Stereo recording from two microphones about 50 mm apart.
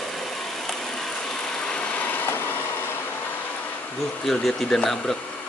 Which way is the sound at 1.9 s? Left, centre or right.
Left.